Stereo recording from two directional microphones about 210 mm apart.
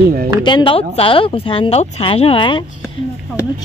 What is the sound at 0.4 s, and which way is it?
Speech, 20° left (ahead or behind).